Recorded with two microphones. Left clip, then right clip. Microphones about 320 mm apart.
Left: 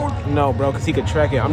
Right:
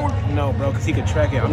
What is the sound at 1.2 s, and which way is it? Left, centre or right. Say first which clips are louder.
Speech: left 2 dB; left.